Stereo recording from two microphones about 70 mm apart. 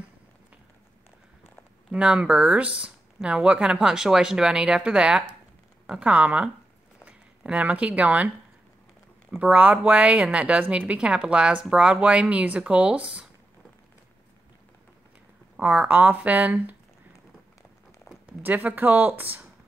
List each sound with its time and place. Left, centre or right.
1.9 s speech: centre
9.4 s speech: right
15.6 s speech: right
18.4 s speech: right